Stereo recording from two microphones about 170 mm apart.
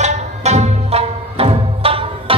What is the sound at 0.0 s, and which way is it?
Music, 40° right (ahead or behind).